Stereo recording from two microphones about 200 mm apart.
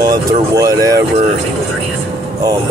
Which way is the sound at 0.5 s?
15° right (ahead or behind).